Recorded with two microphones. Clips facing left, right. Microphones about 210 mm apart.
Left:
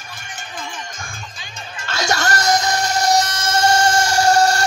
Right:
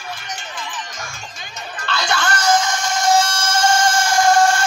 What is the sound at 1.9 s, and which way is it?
Music, 45° left (ahead or behind).